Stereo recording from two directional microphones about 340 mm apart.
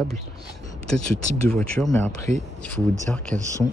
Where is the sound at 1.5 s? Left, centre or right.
Centre.